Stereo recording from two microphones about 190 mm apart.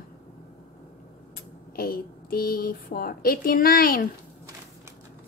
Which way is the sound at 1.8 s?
50° left (ahead or behind).